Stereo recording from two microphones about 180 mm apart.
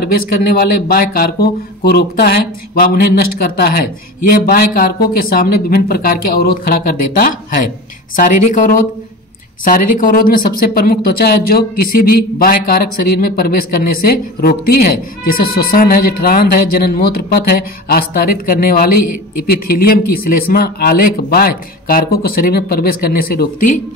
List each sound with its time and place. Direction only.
0.1 s speech: 55° left (ahead or behind)
4.5 s speech: 55° left (ahead or behind)
8.2 s speech: 45° left (ahead or behind)